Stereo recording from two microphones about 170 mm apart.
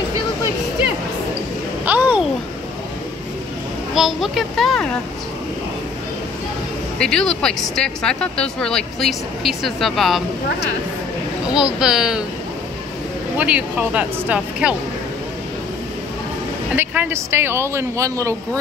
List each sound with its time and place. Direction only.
1.9 s a sound: 10° right (ahead or behind)
3.9 s speech: centre (ahead or behind)
7.0 s speech: 5° left (ahead or behind)
11.5 s speech: 5° right (ahead or behind)
13.4 s speech: 10° right (ahead or behind)
16.7 s speech: 10° right (ahead or behind)